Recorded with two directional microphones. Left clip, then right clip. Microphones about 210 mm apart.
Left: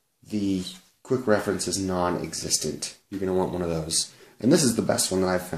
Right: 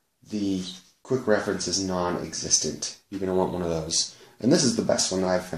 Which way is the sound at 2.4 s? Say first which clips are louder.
Right 3 dB; 20° left (ahead or behind).